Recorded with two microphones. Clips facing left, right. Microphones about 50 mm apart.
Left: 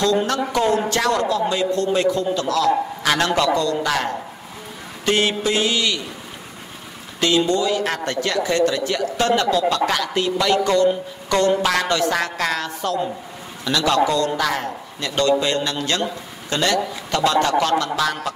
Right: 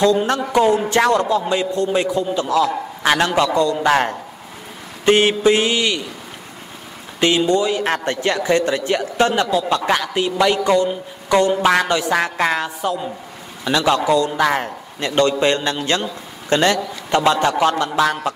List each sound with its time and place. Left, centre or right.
0.0 s a man's voice: centre
7.2 s a man's voice: right